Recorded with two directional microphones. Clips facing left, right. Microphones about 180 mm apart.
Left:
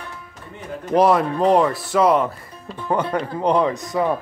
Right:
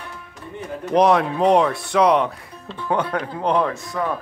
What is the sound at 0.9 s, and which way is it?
Speech, 5° left (ahead or behind).